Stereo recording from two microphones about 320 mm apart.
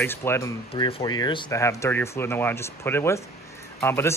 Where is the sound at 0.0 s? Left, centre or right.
Centre.